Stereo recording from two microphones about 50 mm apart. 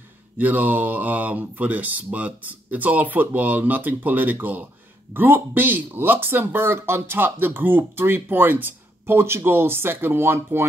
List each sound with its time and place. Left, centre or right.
0.4 s speech: right